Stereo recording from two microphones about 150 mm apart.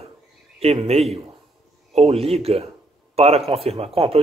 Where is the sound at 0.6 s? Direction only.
40° right (ahead or behind).